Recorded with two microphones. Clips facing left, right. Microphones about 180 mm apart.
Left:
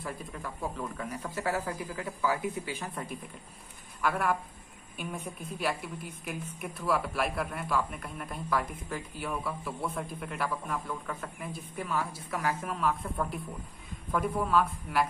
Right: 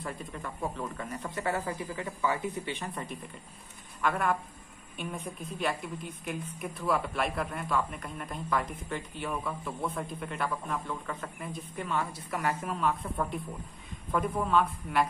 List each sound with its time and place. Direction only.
0.0 s a man's voice: 5° left (ahead or behind)